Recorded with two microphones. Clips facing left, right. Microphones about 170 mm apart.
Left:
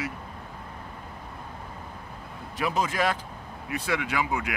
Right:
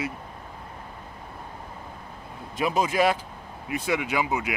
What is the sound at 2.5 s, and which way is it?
A man's voice, 15° right (ahead or behind).